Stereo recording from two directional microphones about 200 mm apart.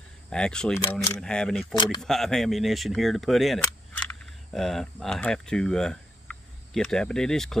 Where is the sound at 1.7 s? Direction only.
25° left (ahead or behind).